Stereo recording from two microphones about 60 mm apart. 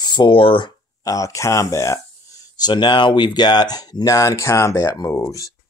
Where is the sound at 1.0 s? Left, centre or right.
Left.